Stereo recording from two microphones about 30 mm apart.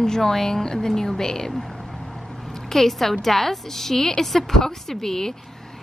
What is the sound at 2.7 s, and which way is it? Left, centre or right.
A woman's voice, centre.